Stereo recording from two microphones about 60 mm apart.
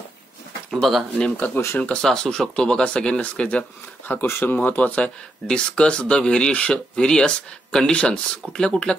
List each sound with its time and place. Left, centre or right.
0.7 s speech: centre
1.3 s speech: left
1.8 s speech: left
2.0 s speech: centre
4.3 s speech: left; by 8.9 s centre